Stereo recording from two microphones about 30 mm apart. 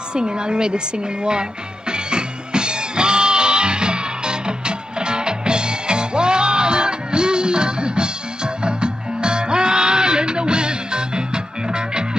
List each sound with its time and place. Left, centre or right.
0.1 s a woman's voice: right
1.9 s music: right